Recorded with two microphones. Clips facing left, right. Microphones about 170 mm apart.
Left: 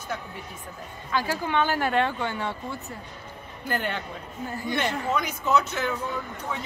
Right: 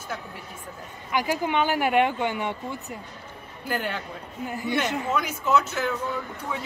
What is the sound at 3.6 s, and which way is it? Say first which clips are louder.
A woman's voice: even; 5° right (ahead or behind).